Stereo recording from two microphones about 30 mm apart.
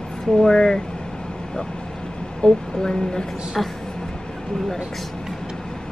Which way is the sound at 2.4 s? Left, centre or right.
Left.